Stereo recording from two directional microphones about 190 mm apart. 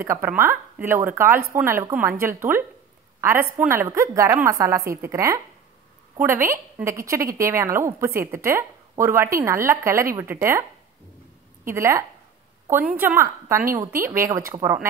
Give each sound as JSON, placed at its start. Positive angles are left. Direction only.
{"t": 0.0, "sound": "a woman's voice", "side_deg": -10}
{"t": 11.6, "sound": "a woman's voice", "side_deg": -15}